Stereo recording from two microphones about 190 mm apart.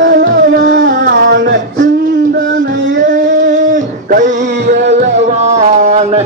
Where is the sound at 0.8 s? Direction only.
50° right (ahead or behind).